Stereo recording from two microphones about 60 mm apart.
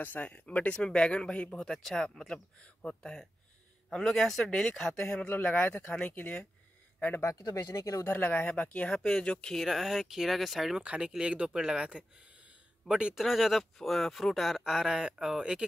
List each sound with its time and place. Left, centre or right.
0.0 s speech: left
1.6 s speech: centre
5.3 s speech: left
7.2 s speech: left
8.0 s speech: left
9.6 s speech: centre
10.8 s speech: centre
13.2 s speech: centre